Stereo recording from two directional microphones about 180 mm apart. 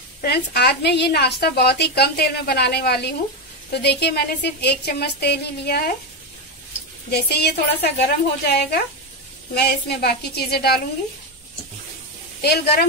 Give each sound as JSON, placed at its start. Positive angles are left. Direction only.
{"t": 0.2, "sound": "a woman's voice", "side_deg": 65}
{"t": 7.1, "sound": "a woman's voice", "side_deg": 65}
{"t": 12.4, "sound": "a woman's voice", "side_deg": 60}